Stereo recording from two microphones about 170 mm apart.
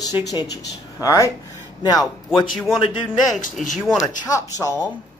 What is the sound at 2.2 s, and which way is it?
Speech, centre (ahead or behind).